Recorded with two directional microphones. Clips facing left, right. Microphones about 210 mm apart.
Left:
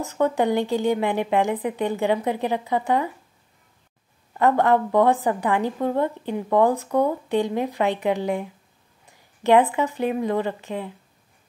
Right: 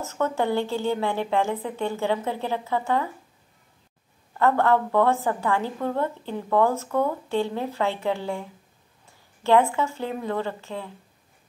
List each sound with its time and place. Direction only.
0.0 s a woman's voice: 15° left (ahead or behind)
4.4 s a woman's voice: 15° left (ahead or behind)